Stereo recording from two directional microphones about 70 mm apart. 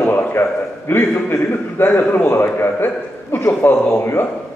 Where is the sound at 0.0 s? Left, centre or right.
Left.